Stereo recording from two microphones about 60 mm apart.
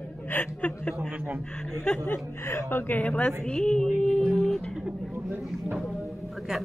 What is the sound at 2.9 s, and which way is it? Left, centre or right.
Speech, left.